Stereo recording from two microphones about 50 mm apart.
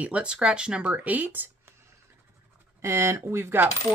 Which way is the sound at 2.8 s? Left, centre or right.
Right.